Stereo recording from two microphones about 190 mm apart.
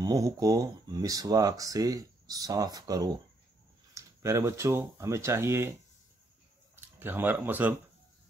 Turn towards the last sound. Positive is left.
turn(degrees=-10)  # may be behind; listen again after turning